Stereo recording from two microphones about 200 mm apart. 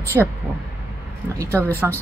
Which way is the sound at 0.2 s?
5° right (ahead or behind).